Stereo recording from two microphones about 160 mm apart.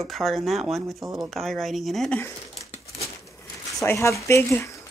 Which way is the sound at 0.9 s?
20° right (ahead or behind).